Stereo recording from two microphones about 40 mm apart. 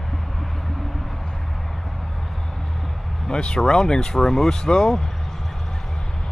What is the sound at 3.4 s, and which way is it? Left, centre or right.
Speech, left.